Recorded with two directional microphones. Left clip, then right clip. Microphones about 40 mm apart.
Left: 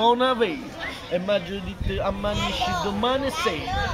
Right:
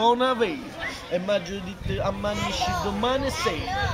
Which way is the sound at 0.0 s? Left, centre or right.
Centre.